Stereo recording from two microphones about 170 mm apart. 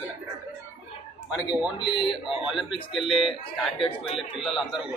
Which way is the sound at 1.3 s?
5° right (ahead or behind).